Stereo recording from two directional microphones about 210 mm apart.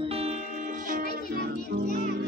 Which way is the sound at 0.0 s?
30° right (ahead or behind).